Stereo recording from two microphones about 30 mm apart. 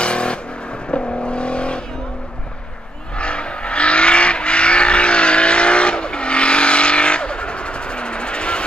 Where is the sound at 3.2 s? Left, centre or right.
Left.